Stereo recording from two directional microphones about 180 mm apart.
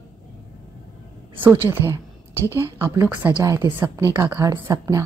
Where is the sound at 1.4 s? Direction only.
10° right (ahead or behind).